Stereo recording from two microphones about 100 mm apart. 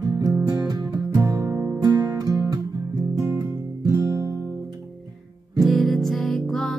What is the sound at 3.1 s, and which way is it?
Music, 35° right (ahead or behind).